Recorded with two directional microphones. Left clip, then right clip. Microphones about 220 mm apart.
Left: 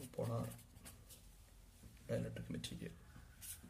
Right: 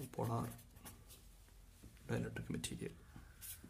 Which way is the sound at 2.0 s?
45° right (ahead or behind).